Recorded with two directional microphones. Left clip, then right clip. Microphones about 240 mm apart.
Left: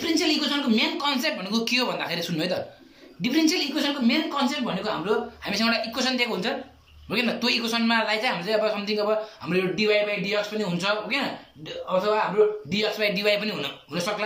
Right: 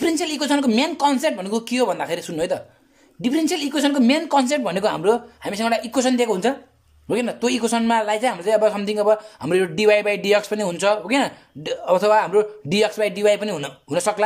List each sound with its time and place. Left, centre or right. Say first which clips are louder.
0.0 s speech: right 2 dB; right